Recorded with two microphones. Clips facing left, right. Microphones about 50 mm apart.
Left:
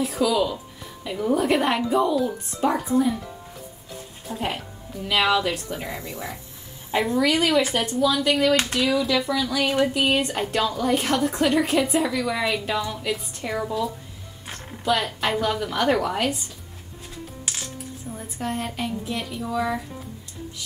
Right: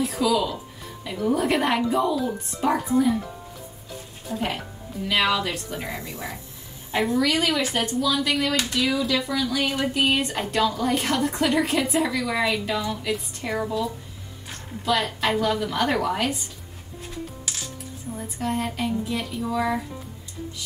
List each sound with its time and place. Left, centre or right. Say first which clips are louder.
0.0 s speech: left 1 dB; centre
4.3 s speech: right 1 dB; centre
8.5 s speech: left 2 dB; left
9.0 s speech: left 1 dB; centre
18.1 s speech: right 2 dB; centre